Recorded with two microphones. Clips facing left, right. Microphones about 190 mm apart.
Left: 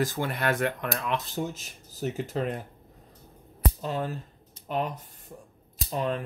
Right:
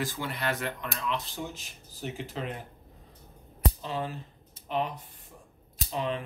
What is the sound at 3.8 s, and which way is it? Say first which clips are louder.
Speech: left 3 dB; 45° left (ahead or behind).